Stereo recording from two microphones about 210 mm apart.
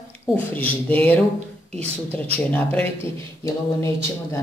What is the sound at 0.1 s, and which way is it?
A man's voice, 10° left (ahead or behind).